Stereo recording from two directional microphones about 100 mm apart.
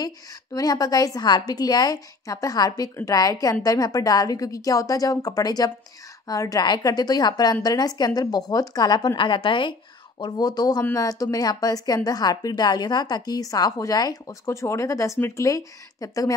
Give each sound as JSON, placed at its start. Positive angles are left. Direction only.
{"t": 0.0, "sound": "a woman's voice", "side_deg": 40}